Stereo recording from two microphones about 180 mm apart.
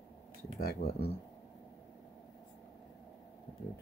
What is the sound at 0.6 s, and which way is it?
Speech, 55° left (ahead or behind).